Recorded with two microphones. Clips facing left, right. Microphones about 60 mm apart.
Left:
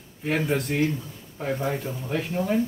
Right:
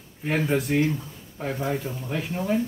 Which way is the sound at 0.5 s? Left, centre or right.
Centre.